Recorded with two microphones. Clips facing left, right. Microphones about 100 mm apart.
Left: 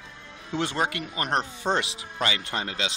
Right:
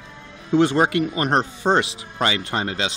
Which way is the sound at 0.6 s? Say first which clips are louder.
Right 10 dB; 35° right (ahead or behind).